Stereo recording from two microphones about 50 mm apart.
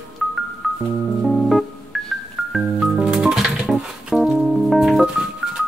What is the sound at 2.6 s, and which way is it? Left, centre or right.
Music, centre.